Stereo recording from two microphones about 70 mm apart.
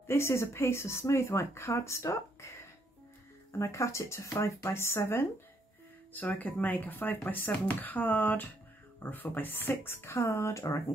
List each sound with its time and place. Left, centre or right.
0.0 s speech: left
3.5 s speech: left
6.3 s speech: left